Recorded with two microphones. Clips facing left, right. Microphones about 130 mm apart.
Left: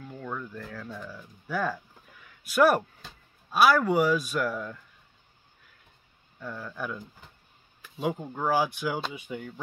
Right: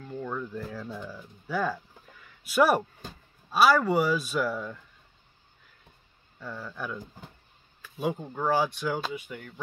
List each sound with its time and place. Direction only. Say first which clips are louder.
0.0 s a sound: right 3 dB; centre (ahead or behind)
1.0 s speech: right 1 dB; 5° right (ahead or behind)
6.4 s speech: left 1 dB; centre (ahead or behind)
8.0 s speech: even; 5° left (ahead or behind)